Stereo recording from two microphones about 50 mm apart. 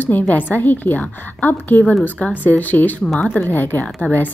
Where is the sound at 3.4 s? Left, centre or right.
Left.